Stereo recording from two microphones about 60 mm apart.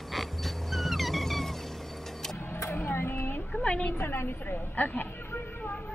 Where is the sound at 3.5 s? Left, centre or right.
Centre.